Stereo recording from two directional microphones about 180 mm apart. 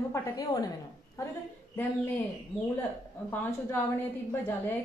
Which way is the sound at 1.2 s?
15° left (ahead or behind).